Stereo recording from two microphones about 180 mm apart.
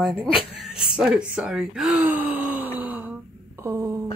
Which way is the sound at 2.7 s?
10° right (ahead or behind).